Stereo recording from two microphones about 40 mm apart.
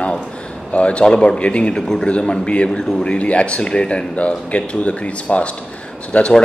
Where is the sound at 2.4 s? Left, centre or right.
Left.